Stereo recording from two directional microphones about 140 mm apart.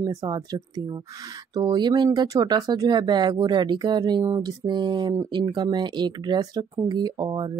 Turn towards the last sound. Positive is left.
turn(degrees=-30)  # may be behind; listen again after turning